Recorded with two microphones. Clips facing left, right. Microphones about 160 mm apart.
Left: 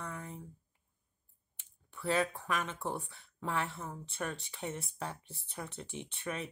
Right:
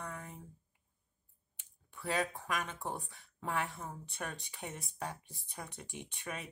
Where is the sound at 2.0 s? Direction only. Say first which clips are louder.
Left 3 dB; 15° right (ahead or behind).